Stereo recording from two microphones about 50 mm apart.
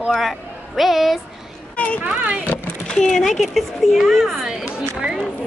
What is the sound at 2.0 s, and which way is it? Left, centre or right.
Speech, right.